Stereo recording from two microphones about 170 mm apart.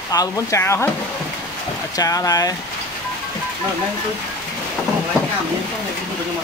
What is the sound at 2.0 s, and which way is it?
Speech, 20° left (ahead or behind).